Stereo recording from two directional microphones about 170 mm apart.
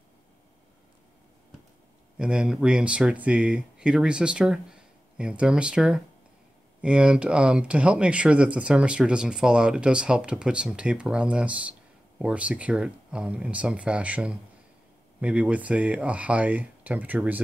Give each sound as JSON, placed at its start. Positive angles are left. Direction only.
{"t": 2.1, "sound": "speech", "side_deg": -5}